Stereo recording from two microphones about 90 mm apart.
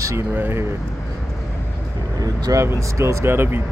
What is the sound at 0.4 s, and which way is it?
Speech, 25° right (ahead or behind).